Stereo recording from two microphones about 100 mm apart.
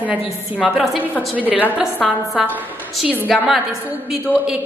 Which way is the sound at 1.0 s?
15° right (ahead or behind).